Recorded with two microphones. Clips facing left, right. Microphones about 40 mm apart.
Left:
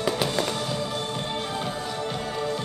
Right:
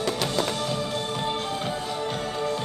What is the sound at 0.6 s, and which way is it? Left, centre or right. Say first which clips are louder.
Music: right 1 dB; centre.